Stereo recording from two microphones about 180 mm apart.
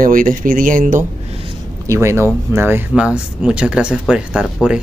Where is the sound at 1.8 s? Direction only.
15° right (ahead or behind).